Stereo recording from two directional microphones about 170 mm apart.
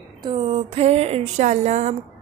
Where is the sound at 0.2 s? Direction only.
30° right (ahead or behind).